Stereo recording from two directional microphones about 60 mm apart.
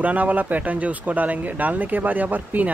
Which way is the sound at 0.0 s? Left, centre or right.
Right.